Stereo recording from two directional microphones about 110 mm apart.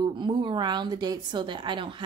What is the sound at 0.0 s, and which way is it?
A woman's voice, 45° right (ahead or behind).